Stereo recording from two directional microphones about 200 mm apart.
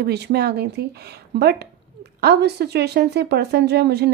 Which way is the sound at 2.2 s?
55° right (ahead or behind).